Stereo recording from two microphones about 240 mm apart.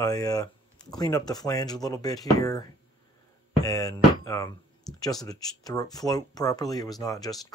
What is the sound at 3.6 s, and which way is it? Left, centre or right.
Music, centre.